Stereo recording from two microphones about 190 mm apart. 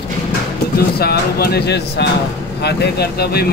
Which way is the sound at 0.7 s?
55° left (ahead or behind).